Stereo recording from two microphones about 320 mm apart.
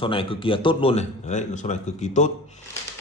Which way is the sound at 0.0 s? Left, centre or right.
Centre.